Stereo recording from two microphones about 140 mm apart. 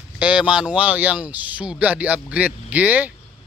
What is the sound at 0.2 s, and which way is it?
Speech, 5° right (ahead or behind).